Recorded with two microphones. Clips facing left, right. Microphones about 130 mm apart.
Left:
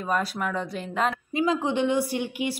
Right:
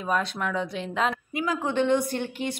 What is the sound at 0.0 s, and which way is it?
Speech, 5° left (ahead or behind).